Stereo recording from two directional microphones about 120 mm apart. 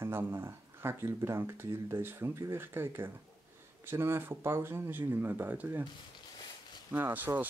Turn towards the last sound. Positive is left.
turn(degrees=-15)  # may be behind; listen again after turning